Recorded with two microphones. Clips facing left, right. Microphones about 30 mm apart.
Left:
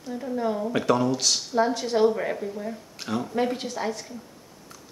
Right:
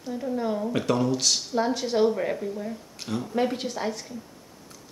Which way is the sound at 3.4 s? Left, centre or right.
Centre.